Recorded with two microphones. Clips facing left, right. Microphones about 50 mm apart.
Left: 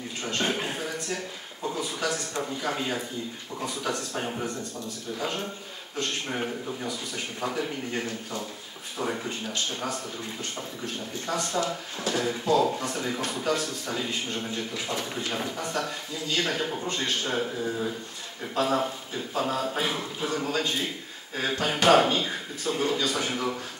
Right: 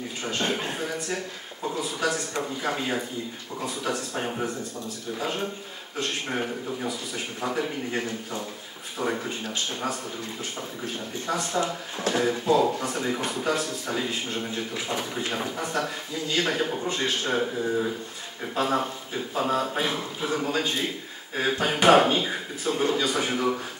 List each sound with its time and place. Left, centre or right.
0.4 s a sound: centre
2.7 s speech: centre
5.9 s speech: centre
11.2 s speech: centre